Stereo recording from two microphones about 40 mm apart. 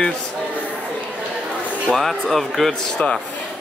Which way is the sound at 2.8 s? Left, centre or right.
Centre.